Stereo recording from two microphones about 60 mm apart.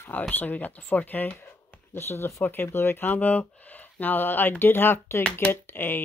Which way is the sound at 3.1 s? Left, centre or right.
Left.